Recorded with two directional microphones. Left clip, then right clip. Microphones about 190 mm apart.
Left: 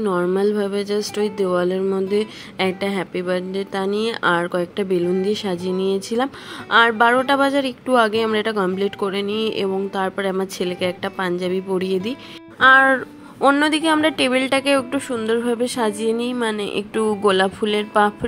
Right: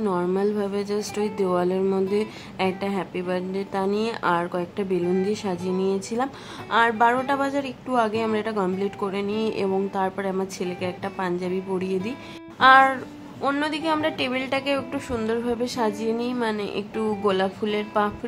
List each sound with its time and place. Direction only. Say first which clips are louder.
0.0 s speech: left 5 dB; 20° left (ahead or behind)
13.4 s speech: left 9 dB; 35° left (ahead or behind)